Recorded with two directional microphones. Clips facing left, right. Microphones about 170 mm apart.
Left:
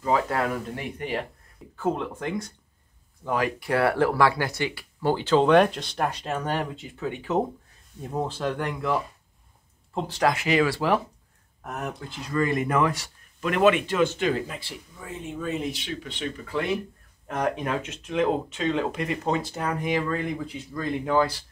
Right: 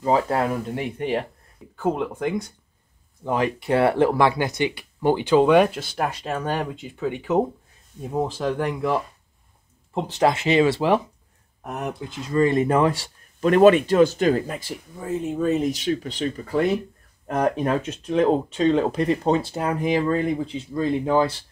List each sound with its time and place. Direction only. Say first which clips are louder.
0.0 s speech: right 4 dB; 30° right (ahead or behind)
1.8 s speech: right 3 dB; 10° right (ahead or behind)
3.3 s speech: right 3 dB; 25° right (ahead or behind)
12.3 s speech: right 6 dB; 30° right (ahead or behind)